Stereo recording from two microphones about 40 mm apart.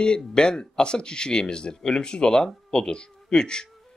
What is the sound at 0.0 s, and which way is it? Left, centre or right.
Speech, centre.